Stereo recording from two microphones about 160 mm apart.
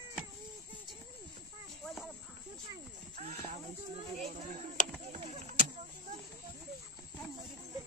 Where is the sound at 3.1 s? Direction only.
40° right (ahead or behind).